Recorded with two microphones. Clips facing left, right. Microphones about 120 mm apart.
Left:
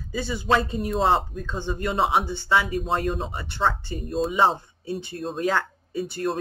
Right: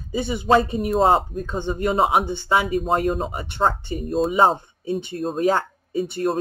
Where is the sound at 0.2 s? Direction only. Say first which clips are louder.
Right 5 dB; 20° right (ahead or behind).